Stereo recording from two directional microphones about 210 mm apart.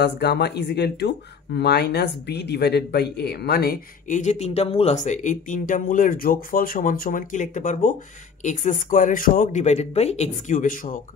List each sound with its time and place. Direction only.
0.0 s speech: 50° left (ahead or behind)